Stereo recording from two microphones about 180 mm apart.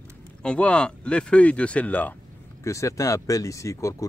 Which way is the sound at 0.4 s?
5° left (ahead or behind).